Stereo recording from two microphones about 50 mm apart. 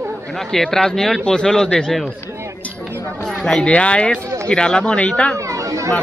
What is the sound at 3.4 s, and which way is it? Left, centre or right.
Speech, centre.